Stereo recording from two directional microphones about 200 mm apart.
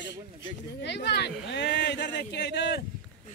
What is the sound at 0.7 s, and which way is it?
Speech, 55° left (ahead or behind).